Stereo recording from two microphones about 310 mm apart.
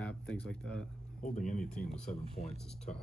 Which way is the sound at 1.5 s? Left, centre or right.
Centre.